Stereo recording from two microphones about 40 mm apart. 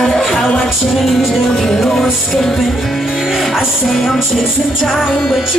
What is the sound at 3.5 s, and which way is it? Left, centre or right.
Music, centre.